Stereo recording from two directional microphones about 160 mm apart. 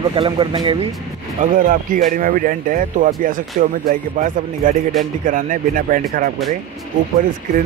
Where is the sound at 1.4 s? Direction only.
55° right (ahead or behind).